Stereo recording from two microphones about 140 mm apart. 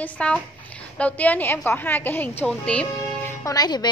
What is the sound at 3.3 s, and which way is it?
Speech, 25° left (ahead or behind).